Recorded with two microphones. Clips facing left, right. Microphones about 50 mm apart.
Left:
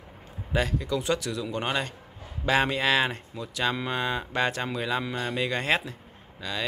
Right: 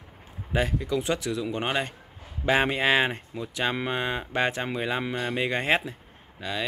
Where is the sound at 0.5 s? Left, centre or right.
Centre.